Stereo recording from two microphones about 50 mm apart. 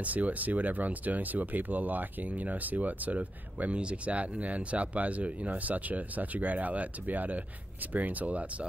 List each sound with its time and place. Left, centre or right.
0.0 s speech: right